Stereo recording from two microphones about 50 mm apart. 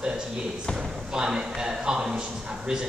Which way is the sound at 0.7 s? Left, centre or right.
Centre.